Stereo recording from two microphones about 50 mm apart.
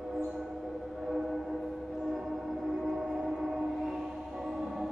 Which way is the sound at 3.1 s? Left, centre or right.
Centre.